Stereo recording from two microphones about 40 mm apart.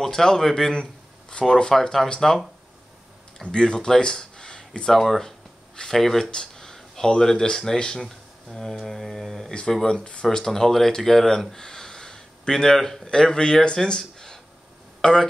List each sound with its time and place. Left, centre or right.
0.0 s speech: centre
1.8 s speech: centre
3.4 s speech: left
5.0 s speech: centre
6.3 s a sound: centre
7.2 s speech: centre
11.5 s a sound: centre
13.0 s speech: left